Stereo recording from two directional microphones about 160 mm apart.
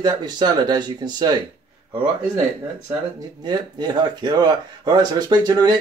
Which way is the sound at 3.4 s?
25° right (ahead or behind).